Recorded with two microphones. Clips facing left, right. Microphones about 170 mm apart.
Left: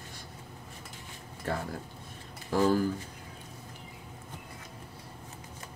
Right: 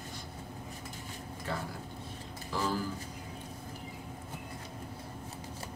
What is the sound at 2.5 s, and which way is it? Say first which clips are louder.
Speech: left 8 dB; 50° left (ahead or behind).